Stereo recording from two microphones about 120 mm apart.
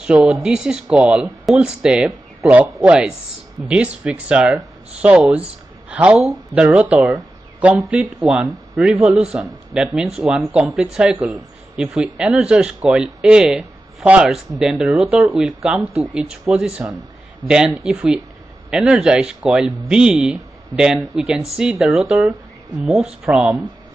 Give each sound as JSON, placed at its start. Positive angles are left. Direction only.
{"t": 0.0, "sound": "speech", "side_deg": -5}